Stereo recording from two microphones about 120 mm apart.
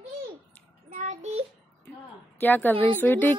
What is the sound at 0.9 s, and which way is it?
Child singing, 75° right (ahead or behind).